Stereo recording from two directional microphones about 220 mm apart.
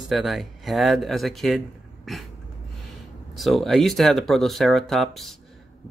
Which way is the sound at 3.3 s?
Centre (ahead or behind).